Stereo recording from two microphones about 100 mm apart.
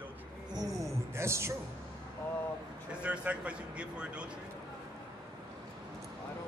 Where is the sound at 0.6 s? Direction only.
30° right (ahead or behind).